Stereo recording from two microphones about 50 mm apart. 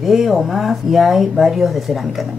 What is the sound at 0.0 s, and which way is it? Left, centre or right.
Speech, centre.